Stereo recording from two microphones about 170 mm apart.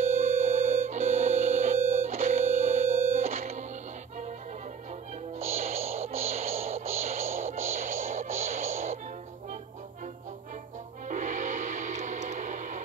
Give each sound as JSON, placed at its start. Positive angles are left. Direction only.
{"t": 0.5, "sound": "music", "side_deg": -40}
{"t": 5.6, "sound": "music", "side_deg": -40}
{"t": 11.1, "sound": "gong", "side_deg": -45}